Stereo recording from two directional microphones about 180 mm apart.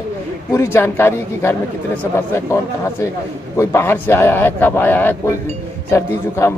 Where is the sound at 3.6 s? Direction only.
15° left (ahead or behind).